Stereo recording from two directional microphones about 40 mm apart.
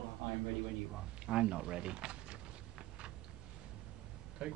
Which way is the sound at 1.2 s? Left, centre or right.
Right.